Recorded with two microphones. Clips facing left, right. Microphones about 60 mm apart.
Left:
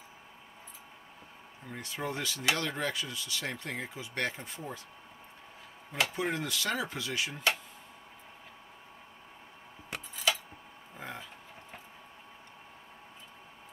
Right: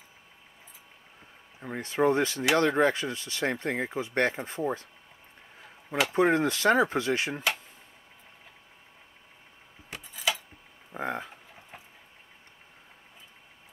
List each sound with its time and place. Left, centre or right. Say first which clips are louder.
1.6 s speech: right 12 dB; right
6.1 s speech: right 10 dB; right
10.1 s keys jangling: right 1 dB; centre
10.9 s speech: right 10 dB; right